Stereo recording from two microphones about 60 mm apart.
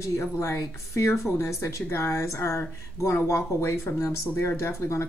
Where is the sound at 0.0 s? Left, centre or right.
Left.